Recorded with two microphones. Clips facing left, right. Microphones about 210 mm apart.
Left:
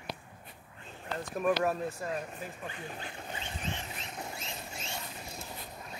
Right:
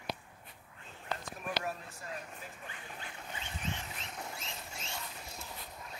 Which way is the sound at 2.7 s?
30° left (ahead or behind).